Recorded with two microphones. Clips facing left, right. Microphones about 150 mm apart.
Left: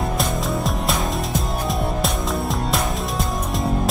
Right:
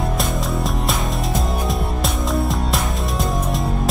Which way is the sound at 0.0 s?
Centre (ahead or behind).